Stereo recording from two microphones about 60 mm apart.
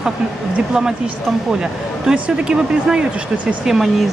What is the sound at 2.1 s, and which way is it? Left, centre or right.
Speech, centre.